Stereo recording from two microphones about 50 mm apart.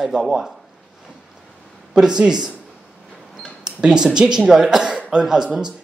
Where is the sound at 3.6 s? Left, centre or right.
Centre.